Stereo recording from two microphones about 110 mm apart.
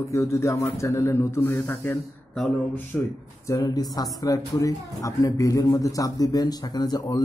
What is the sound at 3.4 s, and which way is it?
Speech, 35° left (ahead or behind).